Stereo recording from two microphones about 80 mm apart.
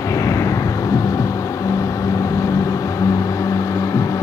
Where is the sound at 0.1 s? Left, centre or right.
Left.